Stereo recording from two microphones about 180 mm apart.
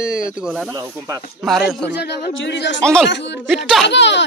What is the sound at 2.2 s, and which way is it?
Speech, 80° left.